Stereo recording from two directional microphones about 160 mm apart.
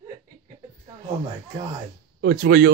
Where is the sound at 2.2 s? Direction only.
75° right (ahead or behind).